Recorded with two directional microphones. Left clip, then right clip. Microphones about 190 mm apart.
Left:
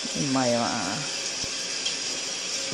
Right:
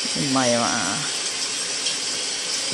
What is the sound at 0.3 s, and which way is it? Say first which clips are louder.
Speech: right 4 dB; 5° left (ahead or behind).